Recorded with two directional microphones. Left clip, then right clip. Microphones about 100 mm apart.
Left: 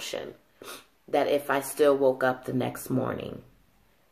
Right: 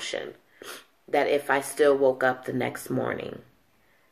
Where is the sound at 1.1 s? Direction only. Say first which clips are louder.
Right 2 dB; 20° left (ahead or behind).